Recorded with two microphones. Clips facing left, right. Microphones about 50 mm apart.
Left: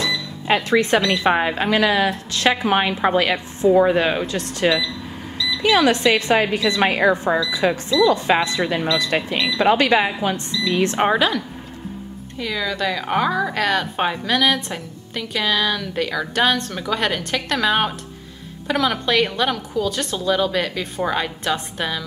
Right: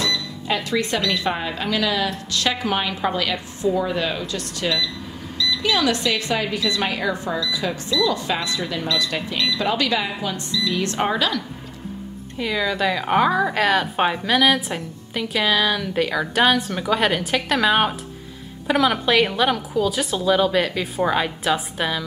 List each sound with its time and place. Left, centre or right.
0.5 s speech: left
12.4 s a woman's voice: centre